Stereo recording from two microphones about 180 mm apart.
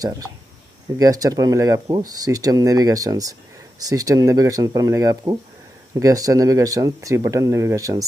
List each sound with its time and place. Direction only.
0.0 s speech: 20° right (ahead or behind)